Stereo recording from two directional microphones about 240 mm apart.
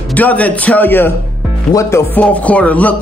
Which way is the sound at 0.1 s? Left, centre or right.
Centre.